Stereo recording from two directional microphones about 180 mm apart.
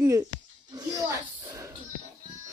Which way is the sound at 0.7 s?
20° right (ahead or behind).